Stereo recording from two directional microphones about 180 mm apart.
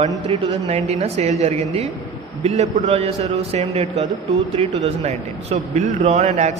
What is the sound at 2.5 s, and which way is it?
Speech, 40° right (ahead or behind).